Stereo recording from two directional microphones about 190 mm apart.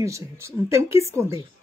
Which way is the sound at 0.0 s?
15° right (ahead or behind).